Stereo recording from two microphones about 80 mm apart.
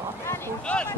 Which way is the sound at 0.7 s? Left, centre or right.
Centre.